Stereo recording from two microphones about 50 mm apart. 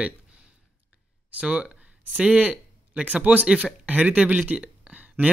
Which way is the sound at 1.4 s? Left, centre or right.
Centre.